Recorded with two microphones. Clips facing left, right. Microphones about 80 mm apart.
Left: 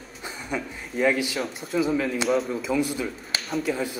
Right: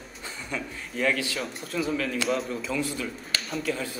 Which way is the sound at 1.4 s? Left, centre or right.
Centre.